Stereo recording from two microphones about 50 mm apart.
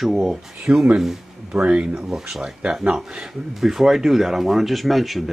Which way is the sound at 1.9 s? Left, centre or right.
Centre.